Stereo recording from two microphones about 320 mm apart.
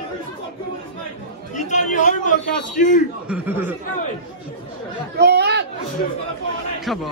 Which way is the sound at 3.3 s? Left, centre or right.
Centre.